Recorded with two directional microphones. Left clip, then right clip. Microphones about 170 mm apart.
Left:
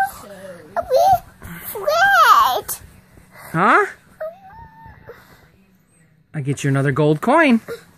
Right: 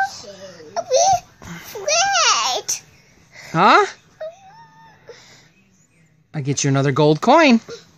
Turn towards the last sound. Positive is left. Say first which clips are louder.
# right 2 dB
turn(degrees=-25)  # may be behind; listen again after turning